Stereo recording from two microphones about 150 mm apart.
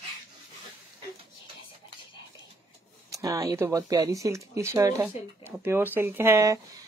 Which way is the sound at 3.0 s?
20° right (ahead or behind).